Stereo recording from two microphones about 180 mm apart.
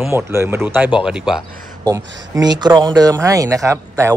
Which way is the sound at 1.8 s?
20° right (ahead or behind).